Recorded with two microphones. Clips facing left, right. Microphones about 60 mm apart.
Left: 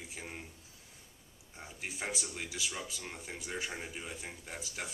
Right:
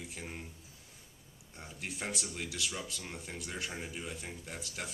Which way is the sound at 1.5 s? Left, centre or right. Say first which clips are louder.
Even; centre.